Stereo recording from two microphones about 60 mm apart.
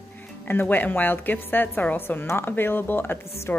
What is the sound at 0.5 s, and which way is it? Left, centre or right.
A woman's voice, left.